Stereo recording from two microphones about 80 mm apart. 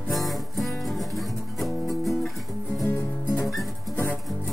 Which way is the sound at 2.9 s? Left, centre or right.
Left.